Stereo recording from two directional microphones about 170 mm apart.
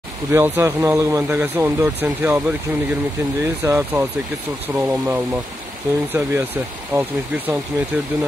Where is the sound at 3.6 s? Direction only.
15° right (ahead or behind).